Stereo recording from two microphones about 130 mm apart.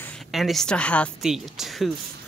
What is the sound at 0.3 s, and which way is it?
Speech, centre (ahead or behind).